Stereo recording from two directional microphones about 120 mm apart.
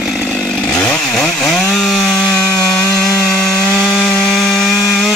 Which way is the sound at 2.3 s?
5° left (ahead or behind).